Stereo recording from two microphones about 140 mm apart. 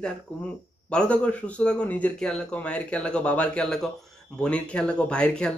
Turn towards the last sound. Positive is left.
turn(degrees=5)  # may be behind; listen again after turning